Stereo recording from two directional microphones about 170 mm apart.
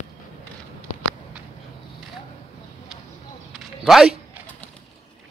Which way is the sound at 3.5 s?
Centre (ahead or behind).